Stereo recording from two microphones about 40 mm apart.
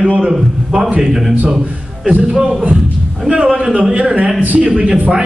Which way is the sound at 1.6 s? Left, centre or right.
Right.